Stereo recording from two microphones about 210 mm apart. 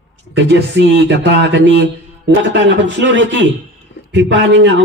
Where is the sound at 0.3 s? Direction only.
60° right (ahead or behind).